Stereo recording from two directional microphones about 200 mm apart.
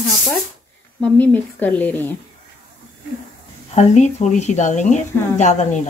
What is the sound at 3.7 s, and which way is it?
A woman's voice, 35° left (ahead or behind).